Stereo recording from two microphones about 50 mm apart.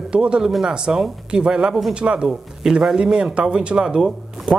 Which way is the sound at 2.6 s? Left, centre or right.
Centre.